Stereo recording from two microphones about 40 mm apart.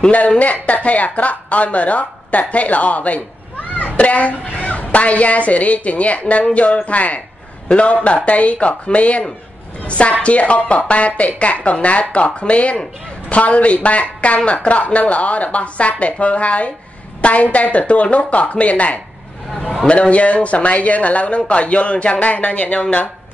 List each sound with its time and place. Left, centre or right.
0.4 s a woman's voice: left
19.5 s speech: left
19.9 s speech: left